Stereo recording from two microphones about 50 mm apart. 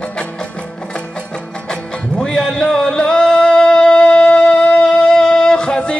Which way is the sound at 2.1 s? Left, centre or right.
Centre.